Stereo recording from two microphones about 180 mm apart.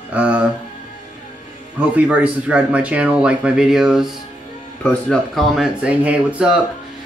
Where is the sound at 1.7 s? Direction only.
5° right (ahead or behind).